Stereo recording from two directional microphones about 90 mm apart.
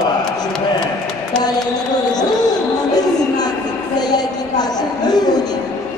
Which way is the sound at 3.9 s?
50° left (ahead or behind).